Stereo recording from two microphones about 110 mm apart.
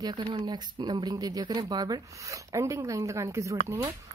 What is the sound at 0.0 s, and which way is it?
Speech, 40° right (ahead or behind).